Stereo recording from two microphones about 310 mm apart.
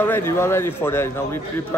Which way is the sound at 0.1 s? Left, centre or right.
Centre.